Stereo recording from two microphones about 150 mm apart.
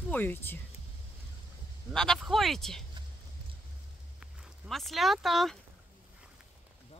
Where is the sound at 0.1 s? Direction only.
15° left (ahead or behind).